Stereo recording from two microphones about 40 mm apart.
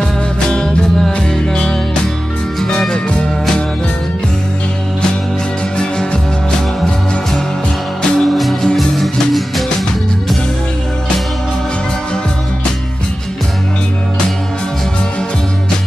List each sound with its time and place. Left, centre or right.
0.5 s music: centre
3.1 s music: left
8.2 s music: centre